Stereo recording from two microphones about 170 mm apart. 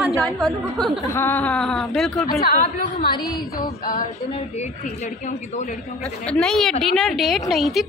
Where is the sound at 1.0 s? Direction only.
15° left (ahead or behind).